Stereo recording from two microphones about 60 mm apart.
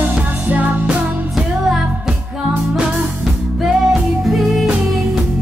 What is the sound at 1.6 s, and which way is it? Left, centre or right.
Music, centre.